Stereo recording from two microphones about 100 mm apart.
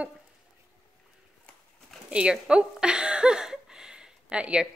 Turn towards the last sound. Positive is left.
turn(degrees=-10)  # may be behind; listen again after turning